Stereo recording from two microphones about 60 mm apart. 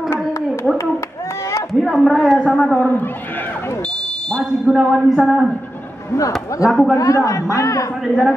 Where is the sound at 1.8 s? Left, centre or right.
Centre.